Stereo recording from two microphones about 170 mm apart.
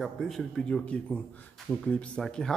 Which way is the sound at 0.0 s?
Centre (ahead or behind).